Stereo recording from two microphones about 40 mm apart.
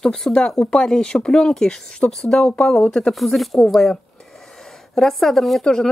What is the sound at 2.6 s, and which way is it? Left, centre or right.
Speech, centre.